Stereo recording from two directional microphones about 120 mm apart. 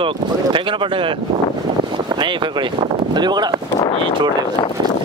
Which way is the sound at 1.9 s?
40° right (ahead or behind).